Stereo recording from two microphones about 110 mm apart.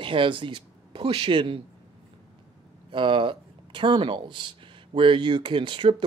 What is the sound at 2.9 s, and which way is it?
Speech, 50° right (ahead or behind).